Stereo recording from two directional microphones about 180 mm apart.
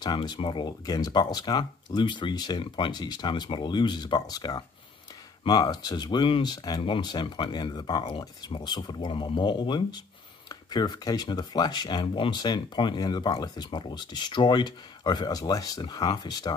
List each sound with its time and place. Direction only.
0.0 s speech: 25° left (ahead or behind)